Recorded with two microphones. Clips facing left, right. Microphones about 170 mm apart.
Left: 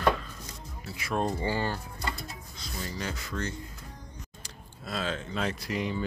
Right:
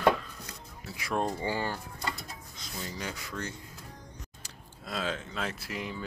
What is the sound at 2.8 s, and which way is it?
Speech, 15° right (ahead or behind).